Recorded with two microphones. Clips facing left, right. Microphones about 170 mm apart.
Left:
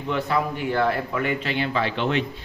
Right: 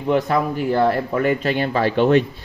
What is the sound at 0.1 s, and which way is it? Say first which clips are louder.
A man's voice: right 6 dB; 40° right (ahead or behind).